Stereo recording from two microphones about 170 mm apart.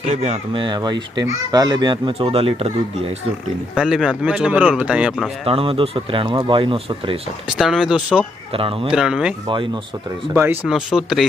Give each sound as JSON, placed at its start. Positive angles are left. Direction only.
{"t": 0.0, "sound": "speech", "side_deg": -40}
{"t": 0.7, "sound": "speech", "side_deg": -25}
{"t": 3.7, "sound": "speech", "side_deg": -5}
{"t": 5.4, "sound": "speech", "side_deg": -35}
{"t": 7.4, "sound": "speech", "side_deg": -5}
{"t": 8.5, "sound": "speech", "side_deg": -30}
{"t": 8.9, "sound": "speech", "side_deg": -5}
{"t": 10.3, "sound": "speech", "side_deg": -15}
{"t": 10.7, "sound": "speech", "side_deg": 0}